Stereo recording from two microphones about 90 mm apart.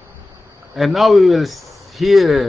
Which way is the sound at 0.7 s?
Centre (ahead or behind).